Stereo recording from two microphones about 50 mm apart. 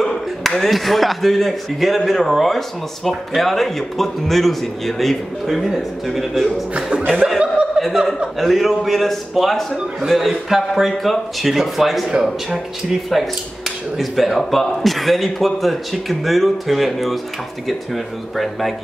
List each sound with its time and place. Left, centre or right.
0.0 s speech: centre
7.3 s chuckle: centre
7.9 s speech: centre
8.4 s speech: centre
13.1 s speech: centre